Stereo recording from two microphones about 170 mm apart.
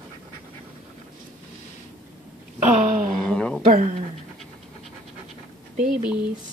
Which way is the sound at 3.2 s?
5° left (ahead or behind).